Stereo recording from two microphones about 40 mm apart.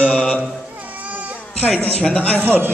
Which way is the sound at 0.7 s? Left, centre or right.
Right.